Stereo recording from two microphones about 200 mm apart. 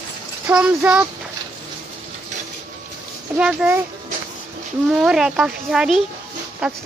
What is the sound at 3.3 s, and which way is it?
Speech, 5° right (ahead or behind).